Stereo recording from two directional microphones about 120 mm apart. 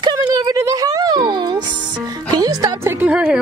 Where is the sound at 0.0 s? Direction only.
35° right (ahead or behind).